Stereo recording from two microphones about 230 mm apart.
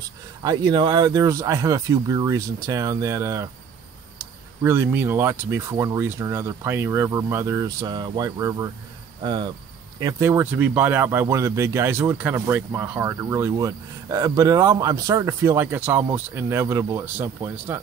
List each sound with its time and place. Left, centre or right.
0.4 s speech: centre